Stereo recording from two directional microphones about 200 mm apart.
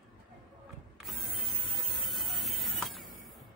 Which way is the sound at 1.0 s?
Centre (ahead or behind).